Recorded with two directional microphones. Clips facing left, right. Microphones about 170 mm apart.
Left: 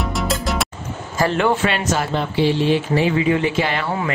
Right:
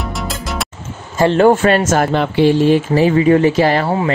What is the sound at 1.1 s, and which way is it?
Speech, 25° right (ahead or behind).